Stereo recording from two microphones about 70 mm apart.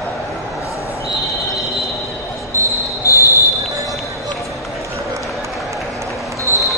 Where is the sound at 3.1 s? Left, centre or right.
Left.